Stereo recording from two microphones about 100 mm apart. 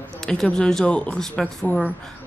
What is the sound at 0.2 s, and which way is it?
A woman's voice, 5° left (ahead or behind).